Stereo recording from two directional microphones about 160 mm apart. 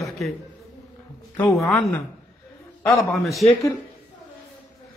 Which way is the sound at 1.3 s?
15° left (ahead or behind).